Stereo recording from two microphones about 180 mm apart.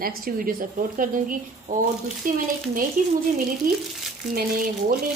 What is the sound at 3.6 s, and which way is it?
Speech, 50° right (ahead or behind).